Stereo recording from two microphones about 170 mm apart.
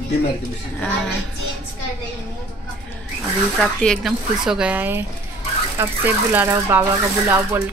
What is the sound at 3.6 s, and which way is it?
A woman's voice, 5° left (ahead or behind).